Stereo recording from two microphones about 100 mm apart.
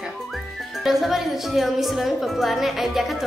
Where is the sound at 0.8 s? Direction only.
Centre (ahead or behind).